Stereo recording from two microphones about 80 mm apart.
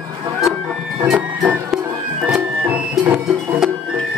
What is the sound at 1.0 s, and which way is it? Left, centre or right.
Printer, centre.